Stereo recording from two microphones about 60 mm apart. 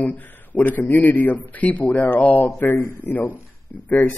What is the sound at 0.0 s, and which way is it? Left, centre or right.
Speech, left.